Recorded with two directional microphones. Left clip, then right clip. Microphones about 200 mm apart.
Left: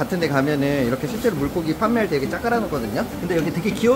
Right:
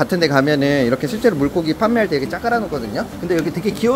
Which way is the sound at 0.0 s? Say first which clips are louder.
Right 5 dB; 30° right (ahead or behind).